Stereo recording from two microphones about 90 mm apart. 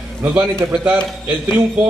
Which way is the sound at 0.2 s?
20° right (ahead or behind).